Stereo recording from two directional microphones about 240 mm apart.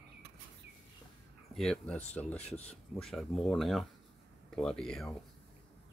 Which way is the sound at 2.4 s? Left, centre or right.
Left.